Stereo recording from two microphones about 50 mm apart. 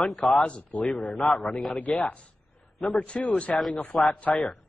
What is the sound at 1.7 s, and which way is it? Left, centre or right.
Speech, left.